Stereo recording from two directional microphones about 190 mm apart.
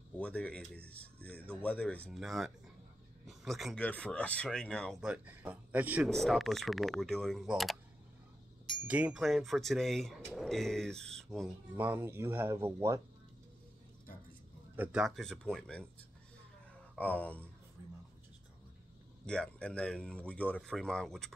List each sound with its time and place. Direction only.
0.2 s speech: 5° left (ahead or behind)
5.1 s speech: 10° right (ahead or behind)
11.7 s speech: 10° right (ahead or behind)
14.8 s speech: 5° right (ahead or behind)
16.9 s speech: 10° left (ahead or behind)
19.2 s speech: 5° left (ahead or behind)